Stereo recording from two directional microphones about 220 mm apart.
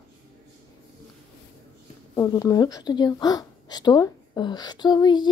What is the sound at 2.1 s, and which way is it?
A woman's voice, 15° left (ahead or behind).